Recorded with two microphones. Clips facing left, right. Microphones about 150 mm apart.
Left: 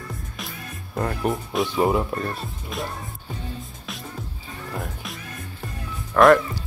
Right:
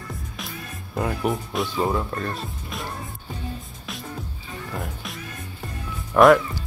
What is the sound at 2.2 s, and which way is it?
Speech, centre (ahead or behind).